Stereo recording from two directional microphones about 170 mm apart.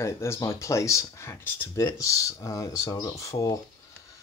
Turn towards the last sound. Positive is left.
turn(degrees=20)  # may be behind; listen again after turning